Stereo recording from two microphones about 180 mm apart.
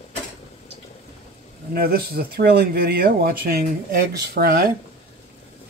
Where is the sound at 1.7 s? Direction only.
60° right (ahead or behind).